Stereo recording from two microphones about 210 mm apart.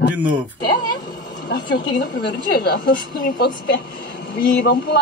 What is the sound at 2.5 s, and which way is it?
A woman's voice, 50° left (ahead or behind).